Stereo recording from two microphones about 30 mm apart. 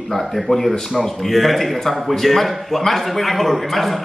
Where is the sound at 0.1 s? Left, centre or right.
Centre.